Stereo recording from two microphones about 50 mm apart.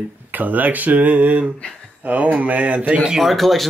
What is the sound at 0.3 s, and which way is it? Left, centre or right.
Speech, right.